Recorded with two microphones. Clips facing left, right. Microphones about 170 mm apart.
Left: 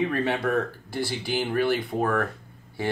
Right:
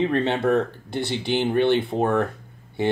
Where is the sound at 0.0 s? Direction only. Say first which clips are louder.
Right 4 dB; 25° right (ahead or behind).